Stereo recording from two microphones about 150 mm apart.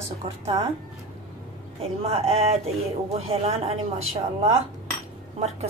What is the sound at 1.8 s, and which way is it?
Speech, 40° right (ahead or behind).